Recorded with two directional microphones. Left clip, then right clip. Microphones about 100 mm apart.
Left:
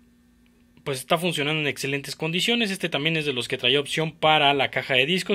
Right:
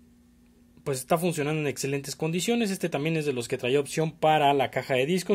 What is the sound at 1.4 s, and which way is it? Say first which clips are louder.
Speech: left 4 dB; 15° right (ahead or behind).